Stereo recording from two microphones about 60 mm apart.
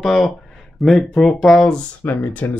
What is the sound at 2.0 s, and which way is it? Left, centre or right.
Speech, left.